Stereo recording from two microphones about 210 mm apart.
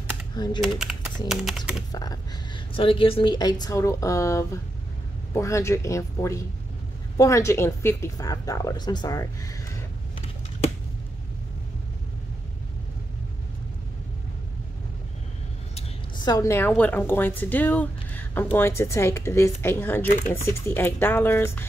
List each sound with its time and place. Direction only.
0.6 s speech: centre (ahead or behind)
1.9 s a woman's voice: 20° left (ahead or behind)
15.7 s a woman's voice: 20° left (ahead or behind)
20.1 s speech: 35° left (ahead or behind)
20.4 s a woman's voice: 10° left (ahead or behind)